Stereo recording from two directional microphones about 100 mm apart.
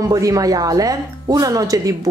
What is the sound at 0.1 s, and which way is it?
Speech, 35° right (ahead or behind).